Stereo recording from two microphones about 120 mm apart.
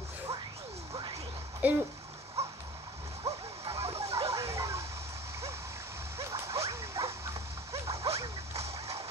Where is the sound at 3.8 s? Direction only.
55° right (ahead or behind).